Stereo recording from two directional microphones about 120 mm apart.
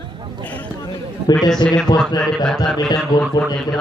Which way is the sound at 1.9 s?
35° left (ahead or behind).